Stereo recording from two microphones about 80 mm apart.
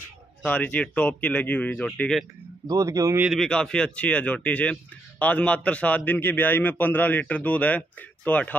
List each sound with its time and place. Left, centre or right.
0.4 s speech: centre
2.8 s a man's voice: right
3.3 s a man's voice: centre